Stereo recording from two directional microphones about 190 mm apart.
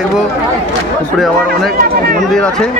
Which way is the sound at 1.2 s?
Centre (ahead or behind).